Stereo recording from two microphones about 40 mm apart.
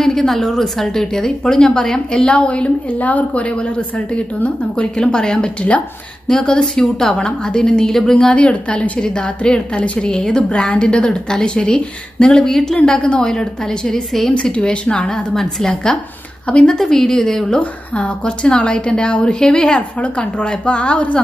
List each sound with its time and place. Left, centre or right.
0.0 s a sound: centre
0.3 s a woman's voice: centre
2.2 s a woman's voice: left
3.9 s a woman's voice: left
4.7 s a woman's voice: left
8.4 s a woman's voice: left; by 12.7 s centre
12.8 s a woman's voice: left
14.3 s a woman's voice: left; by 17.6 s centre
17.6 s a woman's voice: left; by 19.8 s centre
20.0 s a woman's voice: left